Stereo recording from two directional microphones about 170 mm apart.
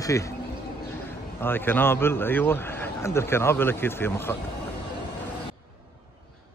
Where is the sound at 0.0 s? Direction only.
15° left (ahead or behind).